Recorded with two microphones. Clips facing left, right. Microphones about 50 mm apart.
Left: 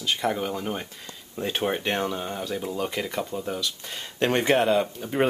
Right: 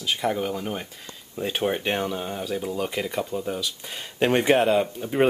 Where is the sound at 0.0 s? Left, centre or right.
Centre.